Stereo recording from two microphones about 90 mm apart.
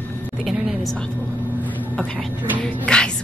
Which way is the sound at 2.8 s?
10° left (ahead or behind).